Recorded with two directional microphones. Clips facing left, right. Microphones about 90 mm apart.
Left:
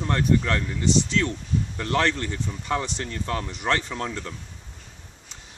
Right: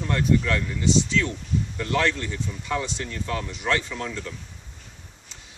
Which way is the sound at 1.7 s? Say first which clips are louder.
Left 1 dB; 35° left (ahead or behind).